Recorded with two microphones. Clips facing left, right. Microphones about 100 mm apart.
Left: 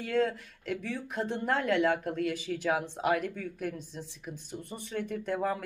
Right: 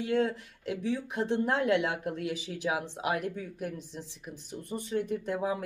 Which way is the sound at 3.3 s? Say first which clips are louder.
Left 1 dB; 15° right (ahead or behind).